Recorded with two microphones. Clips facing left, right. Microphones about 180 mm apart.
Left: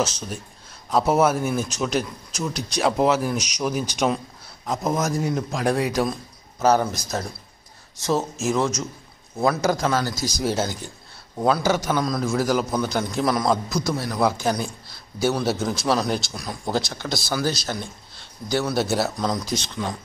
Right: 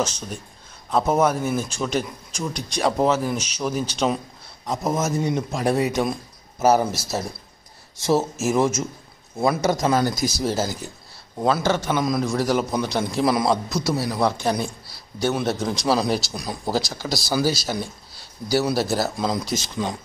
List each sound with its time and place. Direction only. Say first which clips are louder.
0.8 s speech: left 1 dB; 10° left (ahead or behind)
4.6 s speech: even; centre (ahead or behind)
9.8 s speech: right 3 dB; 15° right (ahead or behind)
10.2 s speech: right 1 dB; 5° right (ahead or behind)
12.0 s speech: right 1 dB; centre (ahead or behind)